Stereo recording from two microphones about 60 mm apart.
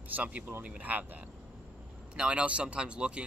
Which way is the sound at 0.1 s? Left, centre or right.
Right.